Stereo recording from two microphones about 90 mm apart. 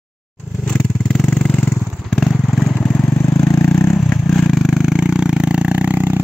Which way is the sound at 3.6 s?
20° left (ahead or behind).